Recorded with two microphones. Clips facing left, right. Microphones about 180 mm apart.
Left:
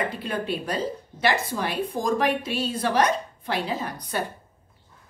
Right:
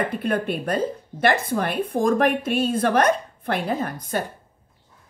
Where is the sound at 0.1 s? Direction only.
55° right (ahead or behind).